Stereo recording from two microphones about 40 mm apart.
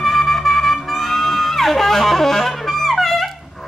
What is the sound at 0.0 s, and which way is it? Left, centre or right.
Music, centre.